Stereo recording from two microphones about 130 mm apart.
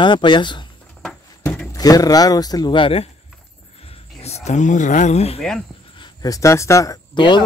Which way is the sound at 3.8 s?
50° left (ahead or behind).